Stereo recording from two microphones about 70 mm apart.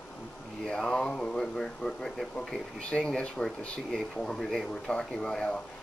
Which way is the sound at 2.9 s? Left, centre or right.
Centre.